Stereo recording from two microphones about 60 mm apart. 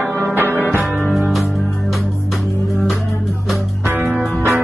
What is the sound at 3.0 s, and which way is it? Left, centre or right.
Music, left.